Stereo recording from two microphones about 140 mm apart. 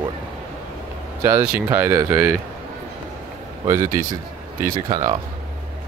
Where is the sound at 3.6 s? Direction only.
20° right (ahead or behind).